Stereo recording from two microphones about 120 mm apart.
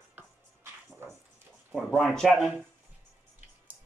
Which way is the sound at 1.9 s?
5° left (ahead or behind).